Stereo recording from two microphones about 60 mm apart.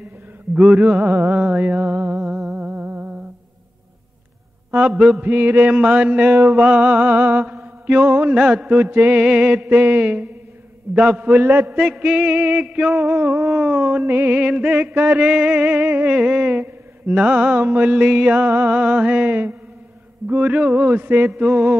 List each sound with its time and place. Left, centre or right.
1.0 s mantra: right
2.1 s music: centre
2.5 s humming: right
4.6 s a man's voice: right
5.2 s mantra: right
11.8 s mantra: centre
13.1 s speech: right
13.5 s mantra: right
14.0 s speech: right
14.3 s mantra: right
20.8 s speech: right
21.4 s mantra: right